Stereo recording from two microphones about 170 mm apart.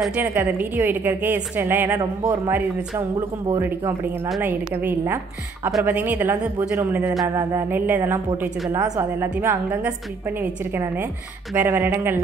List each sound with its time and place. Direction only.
0.0 s a woman's voice: 10° right (ahead or behind)